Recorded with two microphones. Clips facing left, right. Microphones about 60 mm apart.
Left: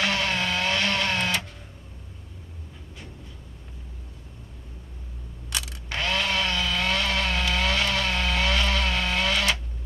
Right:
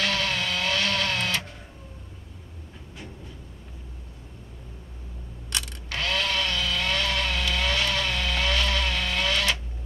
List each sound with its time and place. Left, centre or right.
0.0 s vehicle: centre
5.5 s camera: centre
5.9 s chainsaw: centre